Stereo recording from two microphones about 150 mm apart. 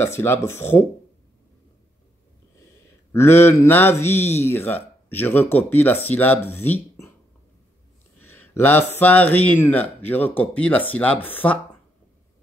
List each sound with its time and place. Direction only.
0.0 s a man's voice: 15° left (ahead or behind)
3.1 s a man's voice: 15° left (ahead or behind)
8.2 s a sound: 15° left (ahead or behind)
8.9 s a man's voice: 10° left (ahead or behind)